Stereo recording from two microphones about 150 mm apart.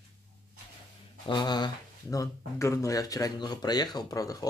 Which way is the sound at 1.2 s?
30° left (ahead or behind).